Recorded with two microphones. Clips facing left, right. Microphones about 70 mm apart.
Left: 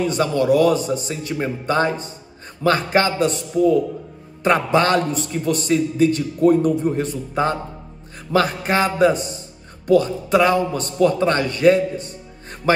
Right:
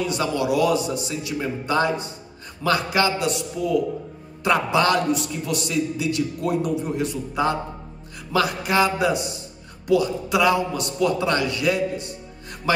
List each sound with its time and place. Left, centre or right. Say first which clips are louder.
0.0 s a man's voice: left 4 dB; left